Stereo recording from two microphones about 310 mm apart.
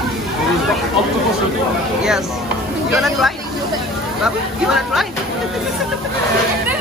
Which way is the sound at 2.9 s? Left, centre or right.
Centre.